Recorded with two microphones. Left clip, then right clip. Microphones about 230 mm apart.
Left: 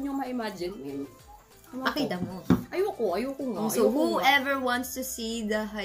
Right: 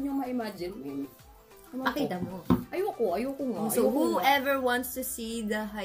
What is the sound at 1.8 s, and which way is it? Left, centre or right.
Speech, centre.